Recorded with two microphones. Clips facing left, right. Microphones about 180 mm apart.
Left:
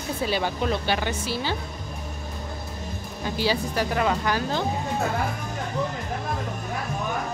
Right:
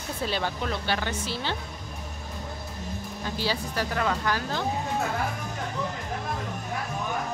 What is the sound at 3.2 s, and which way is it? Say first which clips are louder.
Speech: left 5 dB; 15° left (ahead or behind).